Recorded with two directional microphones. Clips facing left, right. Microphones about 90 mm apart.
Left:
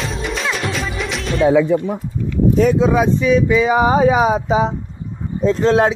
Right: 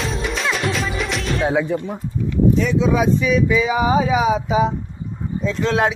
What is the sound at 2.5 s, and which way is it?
Speech, 50° left (ahead or behind).